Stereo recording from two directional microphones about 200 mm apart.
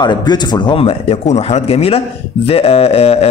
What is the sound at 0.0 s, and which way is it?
A man's voice, 20° left (ahead or behind).